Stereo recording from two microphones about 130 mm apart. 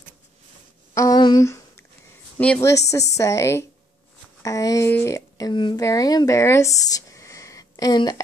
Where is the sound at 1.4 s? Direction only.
20° left (ahead or behind).